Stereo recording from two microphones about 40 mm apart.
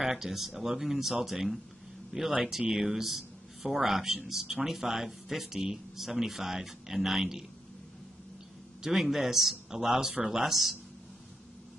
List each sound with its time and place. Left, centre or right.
0.0 s a man's voice: centre
2.1 s a man's voice: centre
8.8 s a man's voice: centre